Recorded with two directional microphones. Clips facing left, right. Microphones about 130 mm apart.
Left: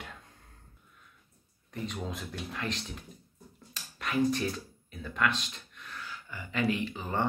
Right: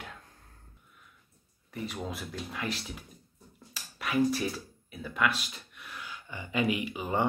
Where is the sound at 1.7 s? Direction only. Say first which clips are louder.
Even; 5° right (ahead or behind).